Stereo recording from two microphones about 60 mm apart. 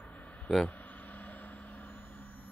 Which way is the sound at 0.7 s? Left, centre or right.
Left.